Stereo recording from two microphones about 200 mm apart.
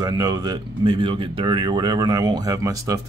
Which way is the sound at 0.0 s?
20° right (ahead or behind).